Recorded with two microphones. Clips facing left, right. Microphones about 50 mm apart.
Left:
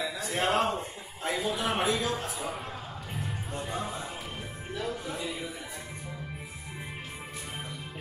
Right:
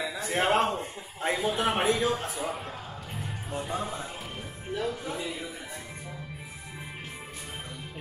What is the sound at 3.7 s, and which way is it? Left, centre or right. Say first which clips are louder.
Music: right 1 dB; centre.